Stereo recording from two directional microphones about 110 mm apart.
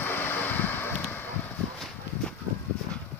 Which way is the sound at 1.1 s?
20° left (ahead or behind).